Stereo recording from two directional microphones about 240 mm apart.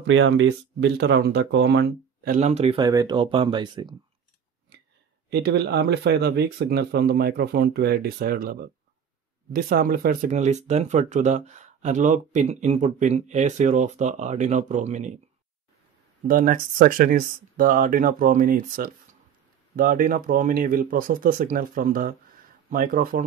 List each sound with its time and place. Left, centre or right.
0.0 s speech: right; by 3.9 s centre
5.3 s speech: right
16.3 s speech: right